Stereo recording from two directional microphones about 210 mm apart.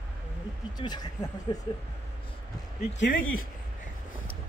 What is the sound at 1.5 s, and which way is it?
Speech, 20° left (ahead or behind).